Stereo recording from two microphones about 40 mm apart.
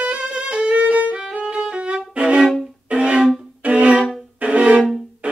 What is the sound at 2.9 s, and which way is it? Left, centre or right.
Music, right.